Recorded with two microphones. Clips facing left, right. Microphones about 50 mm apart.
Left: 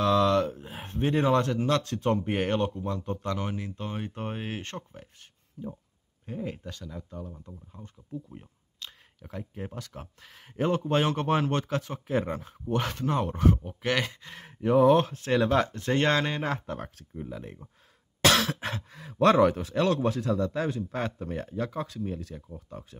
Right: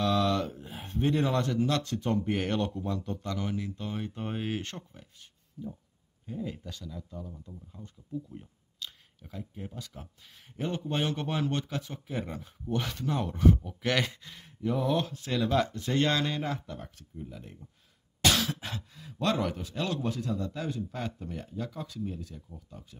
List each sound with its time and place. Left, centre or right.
0.0 s a sound: left
1.0 s speech: left
3.2 s speech: left
4.2 s speech: left
6.2 s speech: left
9.2 s speech: left
13.8 s speech: centre
14.3 s speech: left
16.5 s speech: left
18.2 s cough: left
19.1 s speech: left